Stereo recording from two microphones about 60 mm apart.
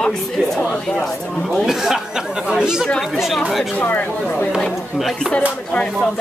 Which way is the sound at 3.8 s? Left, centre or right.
Left.